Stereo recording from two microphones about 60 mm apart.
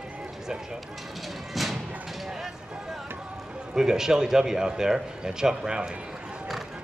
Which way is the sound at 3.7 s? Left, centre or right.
Centre.